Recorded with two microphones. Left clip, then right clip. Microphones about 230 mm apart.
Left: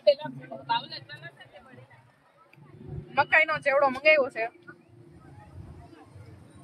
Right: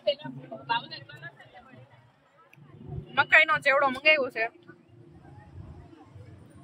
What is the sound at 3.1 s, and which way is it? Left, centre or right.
Speech, centre.